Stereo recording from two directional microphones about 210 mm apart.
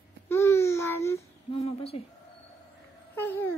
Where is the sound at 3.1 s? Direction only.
10° left (ahead or behind).